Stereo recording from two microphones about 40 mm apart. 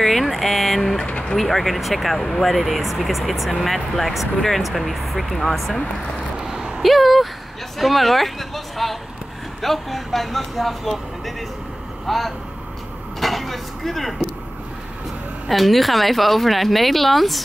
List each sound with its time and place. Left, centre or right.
0.0 s speech: centre
1.0 s vehicle: left
1.3 s speech: centre
6.3 s a sound: centre
6.8 s speech: centre
13.2 s vehicle: centre
15.5 s speech: centre